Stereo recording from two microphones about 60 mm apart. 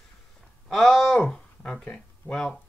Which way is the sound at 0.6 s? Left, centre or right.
Centre.